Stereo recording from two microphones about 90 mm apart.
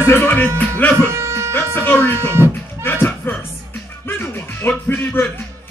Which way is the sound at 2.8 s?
25° left (ahead or behind).